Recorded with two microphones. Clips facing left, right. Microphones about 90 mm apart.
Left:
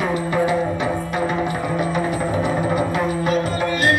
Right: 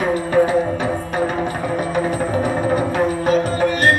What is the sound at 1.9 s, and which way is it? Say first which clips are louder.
Music: right 2 dB; 40° right (ahead or behind).